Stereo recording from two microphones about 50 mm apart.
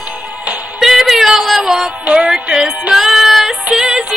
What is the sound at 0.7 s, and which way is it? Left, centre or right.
Music, centre.